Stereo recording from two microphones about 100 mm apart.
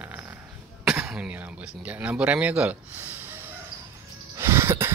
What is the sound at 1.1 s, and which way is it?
Speech, 10° right (ahead or behind).